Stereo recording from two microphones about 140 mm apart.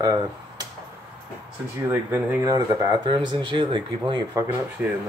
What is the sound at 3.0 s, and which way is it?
Speech, 35° right (ahead or behind).